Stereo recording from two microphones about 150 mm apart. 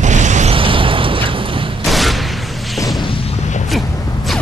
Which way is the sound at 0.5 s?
35° right (ahead or behind).